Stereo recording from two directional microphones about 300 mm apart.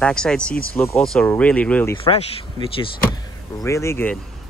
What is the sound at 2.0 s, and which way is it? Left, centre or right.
Speech, centre.